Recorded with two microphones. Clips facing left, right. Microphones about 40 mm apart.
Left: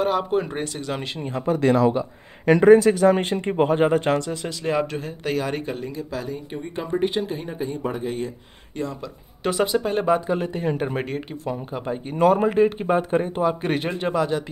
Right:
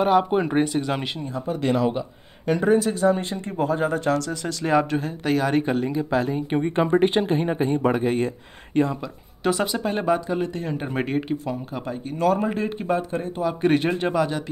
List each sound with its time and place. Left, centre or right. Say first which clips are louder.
0.0 s speech: right 3 dB; centre
2.4 s speech: left 7 dB; left
3.3 s speech: left 4 dB; left
4.2 s speech: left 1 dB; left
4.6 s speech: right 3 dB; centre
5.9 s speech: right 7 dB; right
6.5 s speech: right 7 dB; right
7.8 s a man's voice: right 5 dB; right
8.7 s speech: right 8 dB; right
9.4 s speech: left 1 dB; centre
10.2 s speech: left 2 dB; centre
11.1 s speech: right 5 dB; centre
12.2 s speech: left 5 dB; left
13.6 s speech: right 4 dB; centre